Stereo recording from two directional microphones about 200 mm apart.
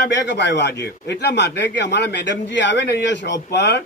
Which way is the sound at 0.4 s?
60° left (ahead or behind).